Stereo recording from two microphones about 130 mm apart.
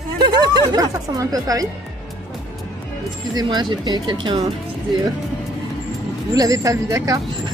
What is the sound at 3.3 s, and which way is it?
Speech, 35° right (ahead or behind).